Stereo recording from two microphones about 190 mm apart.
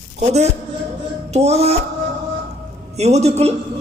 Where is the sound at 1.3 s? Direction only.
35° right (ahead or behind).